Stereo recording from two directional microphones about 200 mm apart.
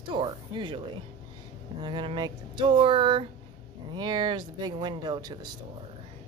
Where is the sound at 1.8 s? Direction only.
25° right (ahead or behind).